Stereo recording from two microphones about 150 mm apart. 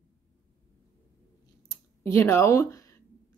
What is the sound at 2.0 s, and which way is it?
Speech, 20° left (ahead or behind).